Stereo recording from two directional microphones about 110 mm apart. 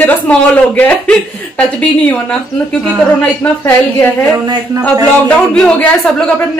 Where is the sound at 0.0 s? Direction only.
15° left (ahead or behind).